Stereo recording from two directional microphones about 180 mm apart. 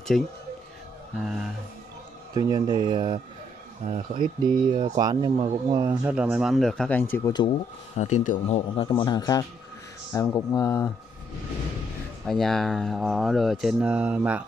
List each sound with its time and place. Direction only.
0.1 s speech: centre (ahead or behind)
2.3 s speech: 20° right (ahead or behind)
4.7 s speech: 25° right (ahead or behind)
6.0 s speech: 10° right (ahead or behind); by 7.3 s 10° left (ahead or behind)
8.0 s speech: 45° left (ahead or behind)
8.8 s speech: 25° left (ahead or behind)
12.3 s speech: centre (ahead or behind)